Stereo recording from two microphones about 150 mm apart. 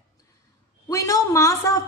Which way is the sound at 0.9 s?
20° left (ahead or behind).